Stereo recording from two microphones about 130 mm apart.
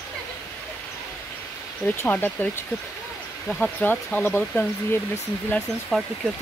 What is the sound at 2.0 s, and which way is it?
Speech, 15° left (ahead or behind).